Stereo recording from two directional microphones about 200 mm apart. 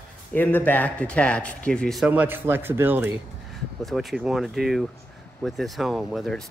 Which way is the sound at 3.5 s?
Centre (ahead or behind).